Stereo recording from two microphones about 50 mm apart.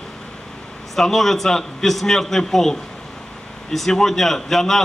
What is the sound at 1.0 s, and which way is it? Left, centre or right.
A man's voice, centre.